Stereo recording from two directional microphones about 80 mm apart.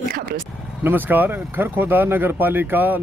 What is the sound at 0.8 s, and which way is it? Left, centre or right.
Speech, right.